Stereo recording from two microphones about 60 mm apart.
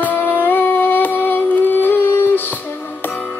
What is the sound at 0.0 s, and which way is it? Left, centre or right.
Music, left.